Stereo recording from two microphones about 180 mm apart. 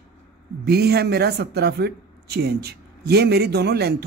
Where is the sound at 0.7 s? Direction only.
60° right (ahead or behind).